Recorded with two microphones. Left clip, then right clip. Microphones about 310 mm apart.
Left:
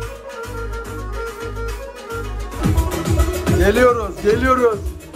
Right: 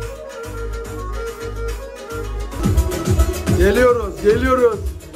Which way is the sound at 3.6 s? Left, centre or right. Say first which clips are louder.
Even; centre.